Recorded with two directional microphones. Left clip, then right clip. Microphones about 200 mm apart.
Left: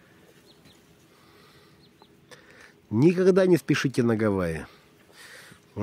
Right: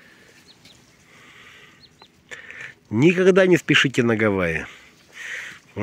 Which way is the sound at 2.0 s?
10° right (ahead or behind).